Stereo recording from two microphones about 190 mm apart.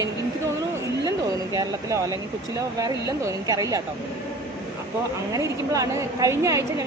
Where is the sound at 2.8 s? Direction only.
15° right (ahead or behind).